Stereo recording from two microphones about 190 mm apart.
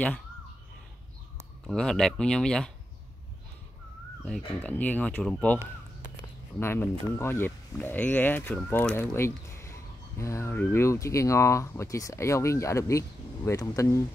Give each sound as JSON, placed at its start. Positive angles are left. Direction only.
{"t": 1.7, "sound": "speech", "side_deg": 5}
{"t": 4.4, "sound": "speech", "side_deg": 10}
{"t": 6.6, "sound": "speech", "side_deg": 10}